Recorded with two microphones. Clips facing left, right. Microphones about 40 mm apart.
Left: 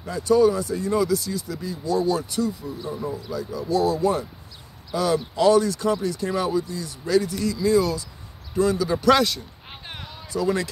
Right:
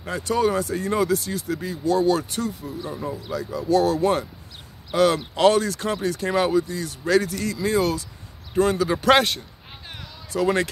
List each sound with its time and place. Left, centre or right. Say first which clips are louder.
0.0 s speech: left 4 dB; right
3.3 s speech: right 6 dB; right